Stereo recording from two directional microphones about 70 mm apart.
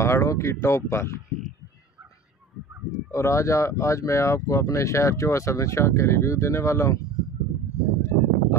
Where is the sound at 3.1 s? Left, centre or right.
Left.